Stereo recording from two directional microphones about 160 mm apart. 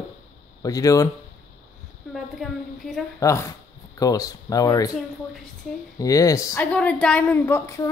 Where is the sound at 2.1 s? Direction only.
Centre (ahead or behind).